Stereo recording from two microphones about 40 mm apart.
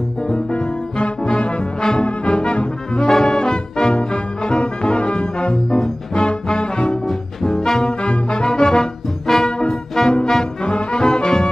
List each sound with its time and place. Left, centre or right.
0.5 s music: left
2.0 s brass instrument: left
3.1 s music: centre
7.1 s brass instrument: centre
9.3 s music: centre
10.6 s brass instrument: left